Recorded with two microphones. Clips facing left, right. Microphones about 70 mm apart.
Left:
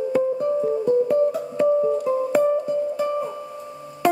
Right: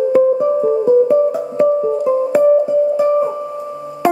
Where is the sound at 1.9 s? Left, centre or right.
Centre.